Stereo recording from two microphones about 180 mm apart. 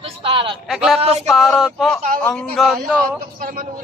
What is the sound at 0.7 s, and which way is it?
Speech, centre (ahead or behind).